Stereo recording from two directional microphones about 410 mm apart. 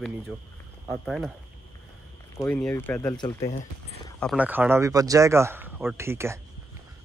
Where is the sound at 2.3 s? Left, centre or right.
Centre.